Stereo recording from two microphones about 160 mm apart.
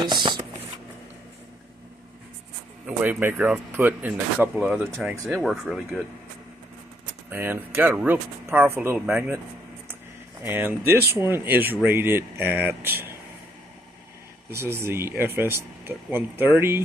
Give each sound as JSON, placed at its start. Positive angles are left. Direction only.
{"t": 0.0, "sound": "speech", "side_deg": -30}
{"t": 3.0, "sound": "speech", "side_deg": -10}
{"t": 5.4, "sound": "speech", "side_deg": 0}
{"t": 7.2, "sound": "speech", "side_deg": -10}
{"t": 10.4, "sound": "speech", "side_deg": -15}
{"t": 14.5, "sound": "speech", "side_deg": -15}